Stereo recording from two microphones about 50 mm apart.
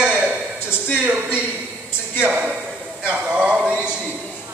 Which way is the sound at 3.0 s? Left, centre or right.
Centre.